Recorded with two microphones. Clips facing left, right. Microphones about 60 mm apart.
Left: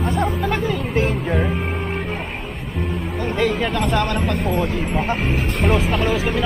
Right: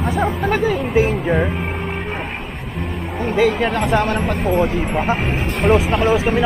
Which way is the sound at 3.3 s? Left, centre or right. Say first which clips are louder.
Right 4 dB; centre.